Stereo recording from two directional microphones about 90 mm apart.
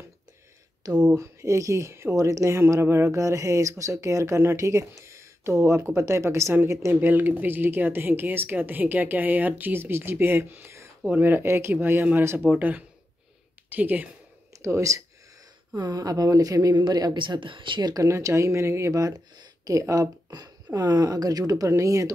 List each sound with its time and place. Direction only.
1.1 s speech: 35° right (ahead or behind); by 14.0 s 20° right (ahead or behind)
14.6 s speech: 35° right (ahead or behind)
15.8 s a woman's voice: 45° right (ahead or behind)
17.2 s speech: 65° right (ahead or behind)
18.0 s speech: 35° right (ahead or behind)